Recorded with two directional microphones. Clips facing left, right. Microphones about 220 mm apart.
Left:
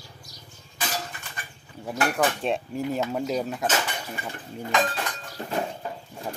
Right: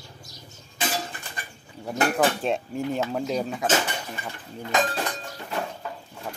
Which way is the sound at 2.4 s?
Centre (ahead or behind).